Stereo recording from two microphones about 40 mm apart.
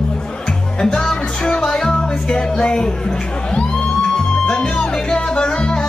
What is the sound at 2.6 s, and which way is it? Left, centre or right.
Speech, left.